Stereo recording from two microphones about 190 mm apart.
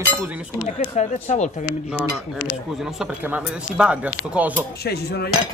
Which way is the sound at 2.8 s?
Centre (ahead or behind).